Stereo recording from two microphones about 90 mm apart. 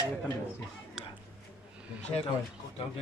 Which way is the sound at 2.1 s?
40° left (ahead or behind).